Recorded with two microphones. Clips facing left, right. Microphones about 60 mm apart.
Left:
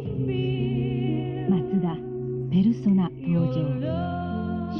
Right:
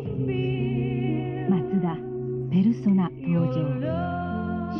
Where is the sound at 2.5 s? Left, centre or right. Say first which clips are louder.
Even; right.